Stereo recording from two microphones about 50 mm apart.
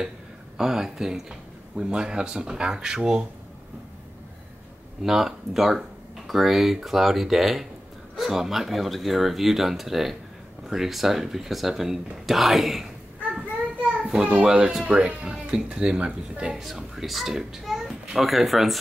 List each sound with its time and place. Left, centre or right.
0.6 s a man's voice: centre
5.0 s a man's voice: centre
14.0 s a man's voice: centre
16.6 s a child's voice: centre